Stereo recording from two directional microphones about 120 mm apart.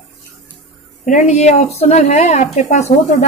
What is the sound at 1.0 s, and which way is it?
A woman's voice, 90° left.